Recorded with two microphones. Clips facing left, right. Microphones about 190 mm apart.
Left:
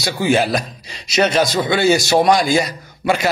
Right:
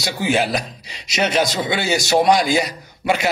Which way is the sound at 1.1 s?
20° right (ahead or behind).